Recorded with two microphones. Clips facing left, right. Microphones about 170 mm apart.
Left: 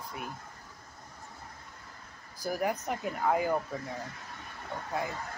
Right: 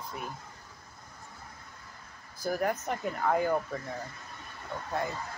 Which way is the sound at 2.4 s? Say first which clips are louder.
Right 1 dB; 10° left (ahead or behind).